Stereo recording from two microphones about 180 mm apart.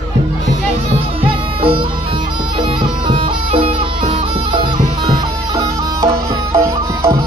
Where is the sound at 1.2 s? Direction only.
30° right (ahead or behind).